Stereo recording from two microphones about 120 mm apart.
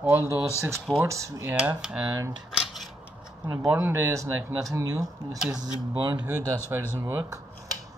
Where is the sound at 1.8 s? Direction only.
10° right (ahead or behind).